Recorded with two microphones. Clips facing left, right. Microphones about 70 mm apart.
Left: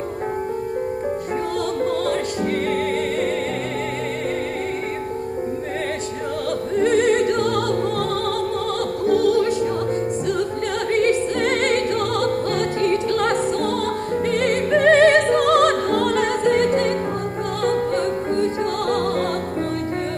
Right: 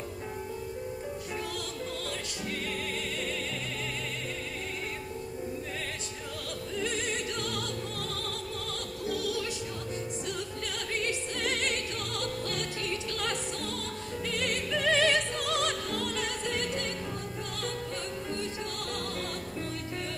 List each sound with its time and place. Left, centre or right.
6.8 s music: left
9.0 s music: left
10.9 s music: left